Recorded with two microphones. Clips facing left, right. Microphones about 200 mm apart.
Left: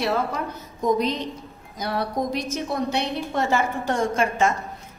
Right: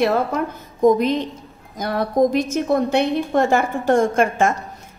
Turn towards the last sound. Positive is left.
turn(degrees=-55)  # may be behind; listen again after turning